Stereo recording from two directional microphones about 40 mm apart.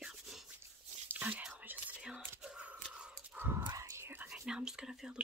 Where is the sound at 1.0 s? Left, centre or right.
Right.